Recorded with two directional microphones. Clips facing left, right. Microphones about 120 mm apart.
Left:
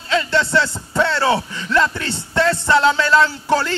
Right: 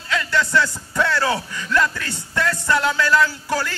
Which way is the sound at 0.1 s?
25° left (ahead or behind).